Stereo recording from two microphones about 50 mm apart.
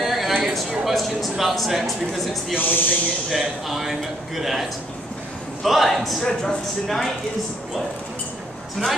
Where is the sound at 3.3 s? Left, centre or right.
Centre.